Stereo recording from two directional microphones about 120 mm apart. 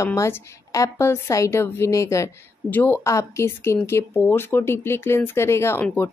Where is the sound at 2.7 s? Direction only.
15° left (ahead or behind).